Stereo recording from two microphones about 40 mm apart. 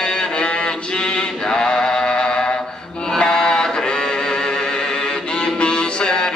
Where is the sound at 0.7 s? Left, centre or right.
Left.